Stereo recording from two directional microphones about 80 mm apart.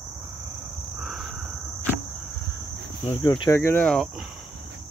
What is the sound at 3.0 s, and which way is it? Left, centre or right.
Speech, left.